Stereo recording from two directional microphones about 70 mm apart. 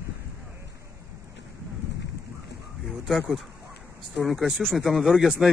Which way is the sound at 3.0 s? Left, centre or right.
Centre.